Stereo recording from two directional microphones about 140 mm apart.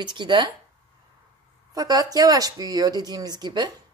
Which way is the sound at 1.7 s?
25° right (ahead or behind).